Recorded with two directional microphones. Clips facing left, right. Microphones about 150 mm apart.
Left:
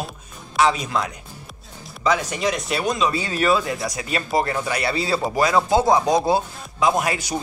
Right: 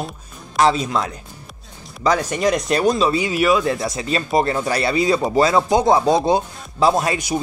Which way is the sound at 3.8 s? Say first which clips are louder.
Right 4 dB; 25° right (ahead or behind).